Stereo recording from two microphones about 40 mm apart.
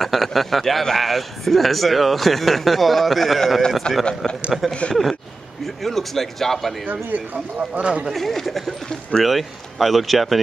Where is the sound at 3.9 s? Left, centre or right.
Left.